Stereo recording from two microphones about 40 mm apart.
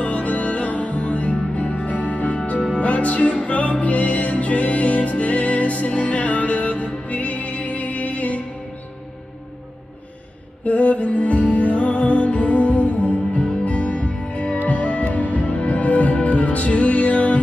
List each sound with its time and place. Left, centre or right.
0.0 s music: left
10.6 s music: left